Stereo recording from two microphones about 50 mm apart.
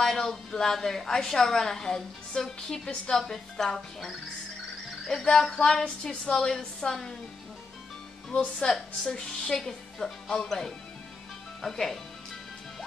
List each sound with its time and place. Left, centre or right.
0.0 s a woman's voice: centre
8.3 s a woman's voice: centre
11.6 s a woman's voice: centre